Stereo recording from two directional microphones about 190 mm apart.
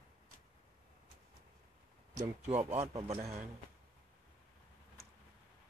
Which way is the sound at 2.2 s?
40° right (ahead or behind).